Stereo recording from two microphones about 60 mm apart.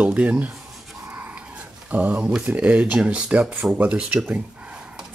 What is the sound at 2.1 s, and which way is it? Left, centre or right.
Speech, centre.